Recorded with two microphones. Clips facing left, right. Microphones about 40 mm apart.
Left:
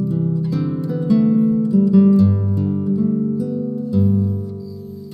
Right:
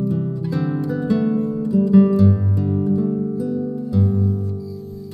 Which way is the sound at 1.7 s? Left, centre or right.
Centre.